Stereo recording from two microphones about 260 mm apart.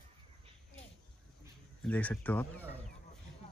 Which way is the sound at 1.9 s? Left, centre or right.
Centre.